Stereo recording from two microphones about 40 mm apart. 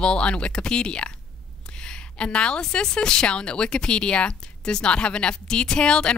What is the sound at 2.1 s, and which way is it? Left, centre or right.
Speech, left.